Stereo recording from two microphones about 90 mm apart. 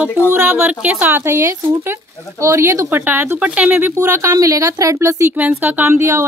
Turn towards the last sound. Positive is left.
turn(degrees=-30)  # may be behind; listen again after turning